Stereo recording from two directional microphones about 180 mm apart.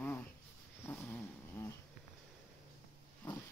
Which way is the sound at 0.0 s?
10° left (ahead or behind).